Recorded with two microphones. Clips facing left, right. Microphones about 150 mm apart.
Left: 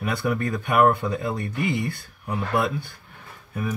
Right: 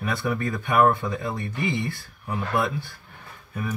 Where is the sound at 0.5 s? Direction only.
10° left (ahead or behind).